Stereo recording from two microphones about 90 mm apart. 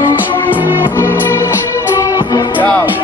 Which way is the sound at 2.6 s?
20° left (ahead or behind).